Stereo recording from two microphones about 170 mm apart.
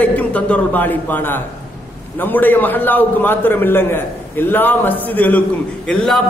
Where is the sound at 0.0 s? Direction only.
10° left (ahead or behind).